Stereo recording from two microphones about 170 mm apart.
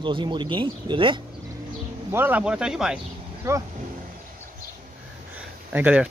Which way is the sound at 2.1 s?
10° right (ahead or behind).